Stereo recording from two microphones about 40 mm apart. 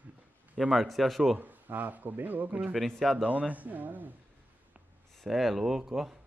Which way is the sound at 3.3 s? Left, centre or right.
Right.